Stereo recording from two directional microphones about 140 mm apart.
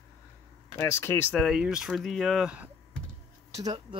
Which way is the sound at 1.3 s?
Centre (ahead or behind).